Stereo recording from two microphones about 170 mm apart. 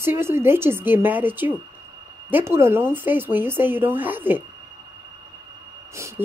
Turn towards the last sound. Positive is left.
turn(degrees=-15)  # may be behind; listen again after turning